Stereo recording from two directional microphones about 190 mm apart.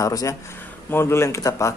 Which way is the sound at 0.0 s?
15° left (ahead or behind).